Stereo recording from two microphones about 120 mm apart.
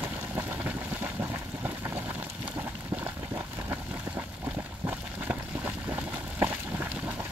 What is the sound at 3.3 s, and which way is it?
Vehicle, 20° right (ahead or behind).